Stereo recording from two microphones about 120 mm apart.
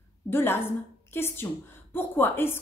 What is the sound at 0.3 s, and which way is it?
A woman's voice, 20° left (ahead or behind).